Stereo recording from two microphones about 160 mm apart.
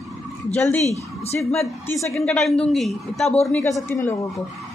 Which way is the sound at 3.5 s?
15° left (ahead or behind).